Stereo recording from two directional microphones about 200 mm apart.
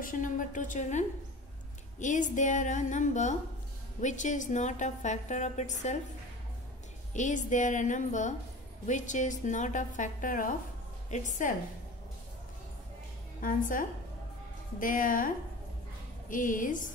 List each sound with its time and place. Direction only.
0.0 s a woman's voice: 40° left (ahead or behind)
7.2 s a woman's voice: 40° left (ahead or behind)
13.4 s a woman's voice: 40° left (ahead or behind)